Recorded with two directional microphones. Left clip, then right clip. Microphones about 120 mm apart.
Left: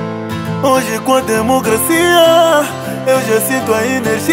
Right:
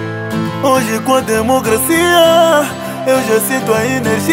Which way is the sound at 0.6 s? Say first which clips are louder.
Even; centre (ahead or behind).